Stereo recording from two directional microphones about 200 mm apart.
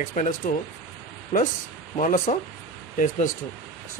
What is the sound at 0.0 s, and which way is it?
Speech, 40° left (ahead or behind).